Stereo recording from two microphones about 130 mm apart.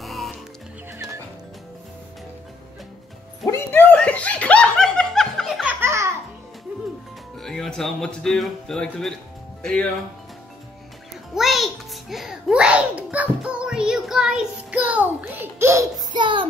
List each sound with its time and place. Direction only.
0.0 s music: centre (ahead or behind)
3.4 s snicker: 20° left (ahead or behind)
5.6 s music: 15° right (ahead or behind)
7.3 s speech: 5° left (ahead or behind)
11.3 s music: centre (ahead or behind); by 15.9 s 20° right (ahead or behind)
16.1 s a sound: 40° right (ahead or behind)